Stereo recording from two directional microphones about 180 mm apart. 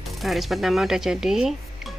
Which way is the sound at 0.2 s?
Centre (ahead or behind).